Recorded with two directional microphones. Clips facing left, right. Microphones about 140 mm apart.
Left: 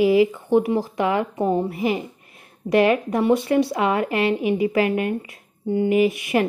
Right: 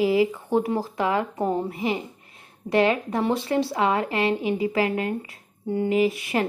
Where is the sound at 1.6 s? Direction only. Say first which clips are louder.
Left 4 dB; 25° right (ahead or behind).